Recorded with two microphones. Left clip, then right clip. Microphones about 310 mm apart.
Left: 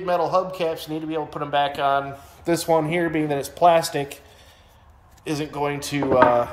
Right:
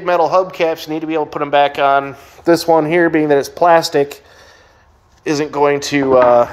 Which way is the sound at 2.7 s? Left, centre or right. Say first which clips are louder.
Right 7 dB; right.